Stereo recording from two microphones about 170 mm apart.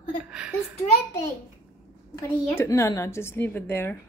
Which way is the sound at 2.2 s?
15° left (ahead or behind).